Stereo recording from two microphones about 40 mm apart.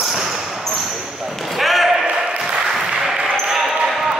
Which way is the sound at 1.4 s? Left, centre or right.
Centre.